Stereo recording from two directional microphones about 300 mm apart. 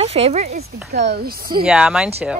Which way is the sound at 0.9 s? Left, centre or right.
Right.